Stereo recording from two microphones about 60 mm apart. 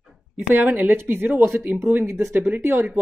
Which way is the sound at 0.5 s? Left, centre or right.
Right.